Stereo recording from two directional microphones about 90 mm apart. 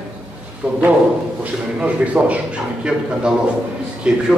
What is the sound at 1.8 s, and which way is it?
Speech, 15° right (ahead or behind).